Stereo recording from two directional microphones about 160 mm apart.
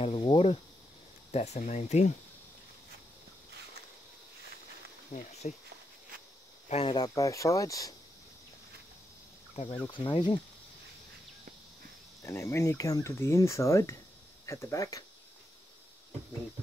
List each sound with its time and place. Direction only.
0.0 s cricket: 35° left (ahead or behind)
1.3 s speech: 45° left (ahead or behind)
5.1 s speech: 50° left (ahead or behind)
6.7 s speech: 35° left (ahead or behind)
7.2 s speech: 20° left (ahead or behind)
9.8 s speech: 30° left (ahead or behind)
12.2 s speech: 15° left (ahead or behind)